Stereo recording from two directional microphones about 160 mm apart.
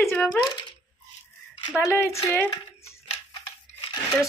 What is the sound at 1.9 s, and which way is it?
Speech, 15° left (ahead or behind).